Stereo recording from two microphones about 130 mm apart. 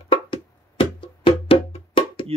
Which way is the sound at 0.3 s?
45° left (ahead or behind).